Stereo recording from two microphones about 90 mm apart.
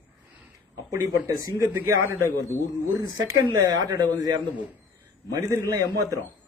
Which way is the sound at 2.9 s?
45° right (ahead or behind).